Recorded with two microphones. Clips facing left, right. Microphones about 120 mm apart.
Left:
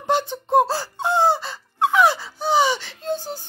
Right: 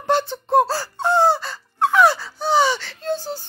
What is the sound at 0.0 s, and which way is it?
Squeak, 15° left (ahead or behind).